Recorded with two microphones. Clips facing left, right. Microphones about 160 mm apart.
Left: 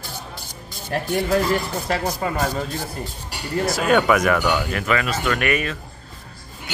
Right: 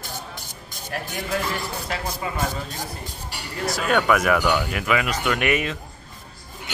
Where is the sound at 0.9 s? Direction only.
45° left (ahead or behind).